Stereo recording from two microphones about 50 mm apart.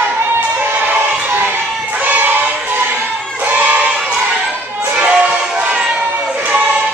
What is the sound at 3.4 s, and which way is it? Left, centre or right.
Crowd, right.